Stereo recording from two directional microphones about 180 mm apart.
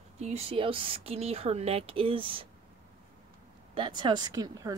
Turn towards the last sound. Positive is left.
turn(degrees=-20)  # may be behind; listen again after turning